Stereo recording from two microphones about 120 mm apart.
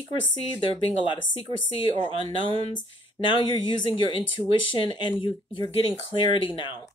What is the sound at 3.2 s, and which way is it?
Speech, 40° left (ahead or behind).